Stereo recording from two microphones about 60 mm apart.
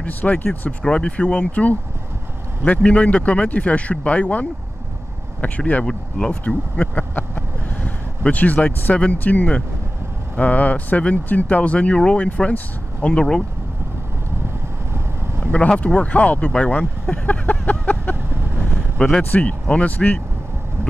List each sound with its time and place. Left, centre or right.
0.0 s speech: left
0.5 s speech: centre
5.9 s speech: centre
6.4 s speech: left
15.4 s a sound: left
15.7 s speech: centre
18.9 s speech: centre